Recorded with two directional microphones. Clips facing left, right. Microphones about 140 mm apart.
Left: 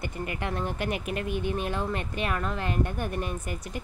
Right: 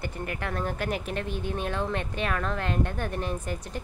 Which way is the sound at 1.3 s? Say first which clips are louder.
Left 3 dB; 55° left (ahead or behind).